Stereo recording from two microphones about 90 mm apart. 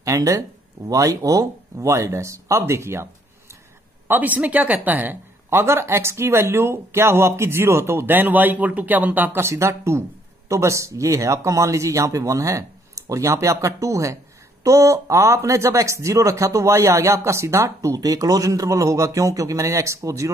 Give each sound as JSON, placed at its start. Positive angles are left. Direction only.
{"t": 0.0, "sound": "speech", "side_deg": -35}
{"t": 4.1, "sound": "speech", "side_deg": -20}